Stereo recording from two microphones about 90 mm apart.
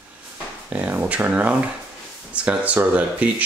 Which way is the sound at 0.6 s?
15° right (ahead or behind).